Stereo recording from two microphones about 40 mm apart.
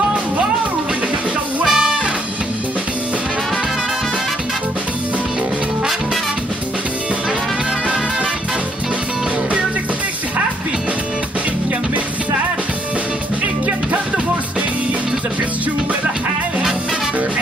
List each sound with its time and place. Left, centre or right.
1.6 s music: centre
13.7 s music: right